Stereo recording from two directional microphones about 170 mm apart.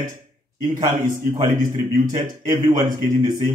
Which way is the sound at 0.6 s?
25° right (ahead or behind).